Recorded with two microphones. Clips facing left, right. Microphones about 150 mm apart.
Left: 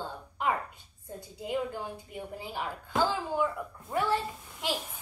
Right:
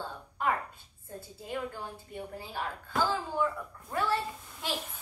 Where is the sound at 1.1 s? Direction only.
15° left (ahead or behind).